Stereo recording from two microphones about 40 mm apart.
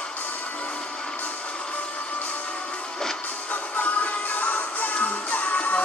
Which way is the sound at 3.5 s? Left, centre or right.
Left.